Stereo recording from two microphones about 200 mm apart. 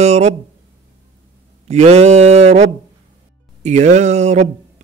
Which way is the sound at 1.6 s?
35° right (ahead or behind).